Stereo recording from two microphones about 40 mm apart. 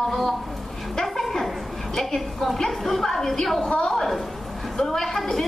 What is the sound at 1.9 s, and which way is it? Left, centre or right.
A woman's voice, centre.